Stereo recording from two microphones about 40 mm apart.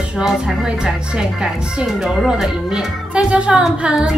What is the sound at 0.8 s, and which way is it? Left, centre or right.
Speech, centre.